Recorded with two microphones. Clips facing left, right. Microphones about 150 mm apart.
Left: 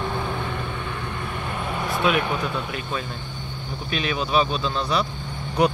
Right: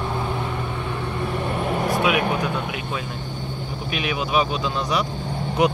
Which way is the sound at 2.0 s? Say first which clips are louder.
Left 2 dB; 15° right (ahead or behind).